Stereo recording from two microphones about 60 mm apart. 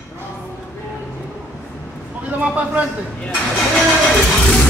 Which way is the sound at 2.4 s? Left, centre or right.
Right.